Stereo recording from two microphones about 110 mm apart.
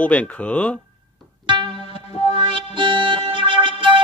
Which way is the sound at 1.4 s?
45° right (ahead or behind).